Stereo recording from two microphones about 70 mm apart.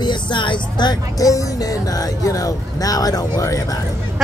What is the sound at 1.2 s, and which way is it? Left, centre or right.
Speech, left.